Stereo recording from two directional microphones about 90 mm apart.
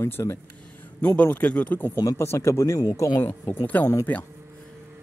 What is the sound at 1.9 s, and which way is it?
Speech, 40° left (ahead or behind).